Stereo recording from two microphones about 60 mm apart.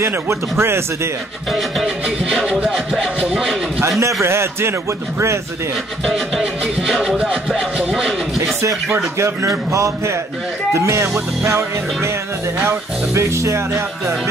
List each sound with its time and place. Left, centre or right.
0.3 s speech: right
1.5 s music: centre
2.4 s speech: centre
4.2 s speech: right
6.0 s speech: centre
9.2 s a man's voice: right